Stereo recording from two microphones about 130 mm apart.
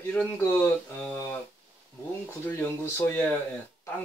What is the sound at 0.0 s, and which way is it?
Speech, 15° left (ahead or behind).